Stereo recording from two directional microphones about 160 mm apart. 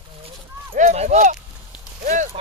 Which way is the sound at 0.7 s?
45° right (ahead or behind).